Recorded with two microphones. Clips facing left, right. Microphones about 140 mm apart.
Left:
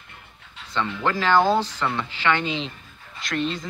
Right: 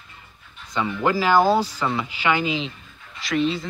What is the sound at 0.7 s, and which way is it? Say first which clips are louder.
Speech: right 3 dB; 10° right (ahead or behind).